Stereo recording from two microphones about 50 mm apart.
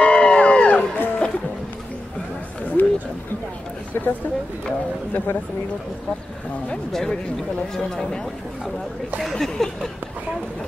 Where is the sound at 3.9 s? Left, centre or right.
Left.